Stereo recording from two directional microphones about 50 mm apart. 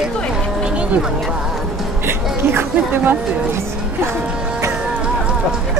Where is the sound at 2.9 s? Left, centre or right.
Right.